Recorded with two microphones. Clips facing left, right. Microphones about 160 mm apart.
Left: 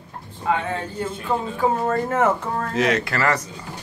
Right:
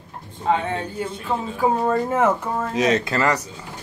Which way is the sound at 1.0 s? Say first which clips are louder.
Left 1 dB; centre (ahead or behind).